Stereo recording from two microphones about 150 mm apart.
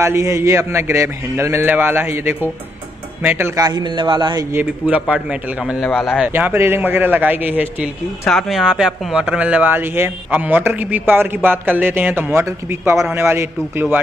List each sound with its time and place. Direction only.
0.0 s speech: 20° right (ahead or behind)
3.6 s speech: 30° right (ahead or behind)
4.5 s speech: 10° right (ahead or behind)
8.3 s speech: centre (ahead or behind)